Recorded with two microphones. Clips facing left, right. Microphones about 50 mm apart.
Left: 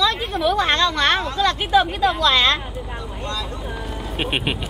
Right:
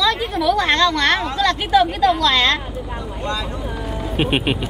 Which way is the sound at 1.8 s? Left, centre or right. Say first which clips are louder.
Right 3 dB; centre.